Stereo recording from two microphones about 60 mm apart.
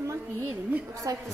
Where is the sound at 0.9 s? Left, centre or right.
Right.